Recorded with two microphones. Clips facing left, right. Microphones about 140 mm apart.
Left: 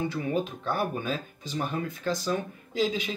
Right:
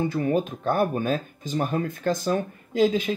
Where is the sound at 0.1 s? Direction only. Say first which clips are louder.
Right 5 dB; 50° right (ahead or behind).